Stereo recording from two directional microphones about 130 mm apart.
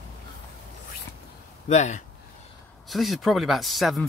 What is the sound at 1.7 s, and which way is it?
Speech, 65° left (ahead or behind).